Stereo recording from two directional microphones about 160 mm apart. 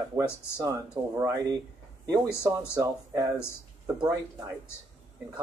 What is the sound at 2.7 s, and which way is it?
Speech, 20° right (ahead or behind).